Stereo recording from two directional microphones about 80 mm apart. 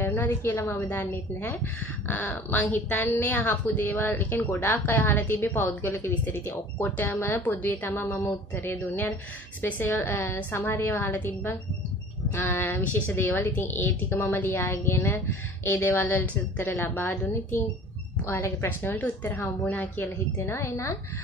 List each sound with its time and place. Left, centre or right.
0.0 s a sound: centre
0.3 s a woman's voice: left
18.2 s a woman's voice: left
18.8 s a woman's voice: left
20.4 s a woman's voice: left